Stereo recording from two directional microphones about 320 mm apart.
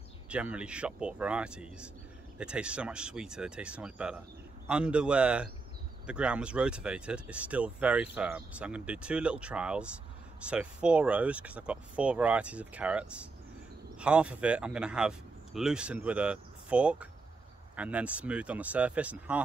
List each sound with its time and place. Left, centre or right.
0.3 s speech: centre